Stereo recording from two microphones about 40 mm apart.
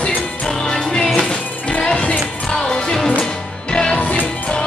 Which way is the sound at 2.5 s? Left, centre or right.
Centre.